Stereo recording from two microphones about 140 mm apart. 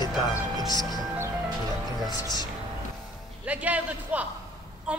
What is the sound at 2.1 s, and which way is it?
Speech, 30° left (ahead or behind).